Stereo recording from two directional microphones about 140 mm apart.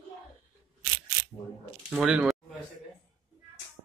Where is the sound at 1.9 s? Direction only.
5° right (ahead or behind).